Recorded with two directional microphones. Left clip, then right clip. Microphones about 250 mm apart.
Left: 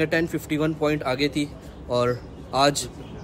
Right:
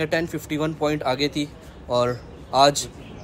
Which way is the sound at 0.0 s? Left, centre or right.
Centre.